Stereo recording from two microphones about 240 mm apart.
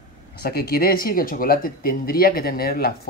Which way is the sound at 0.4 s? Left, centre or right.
Left.